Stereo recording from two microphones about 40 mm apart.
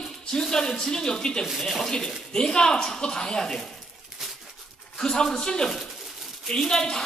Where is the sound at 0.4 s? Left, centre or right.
Centre.